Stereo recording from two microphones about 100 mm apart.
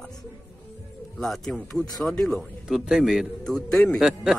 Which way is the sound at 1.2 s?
5° left (ahead or behind).